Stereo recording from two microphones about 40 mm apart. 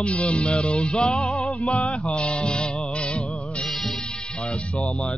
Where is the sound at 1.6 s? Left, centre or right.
Left.